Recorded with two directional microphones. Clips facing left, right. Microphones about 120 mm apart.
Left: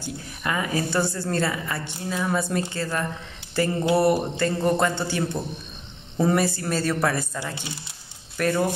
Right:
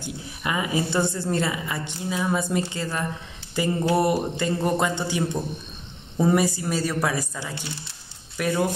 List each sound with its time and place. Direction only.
0.0 s speech: 15° right (ahead or behind)
8.4 s speech: 10° right (ahead or behind)